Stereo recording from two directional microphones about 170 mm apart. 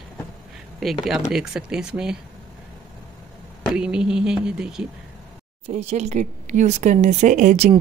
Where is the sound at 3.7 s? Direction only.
5° right (ahead or behind).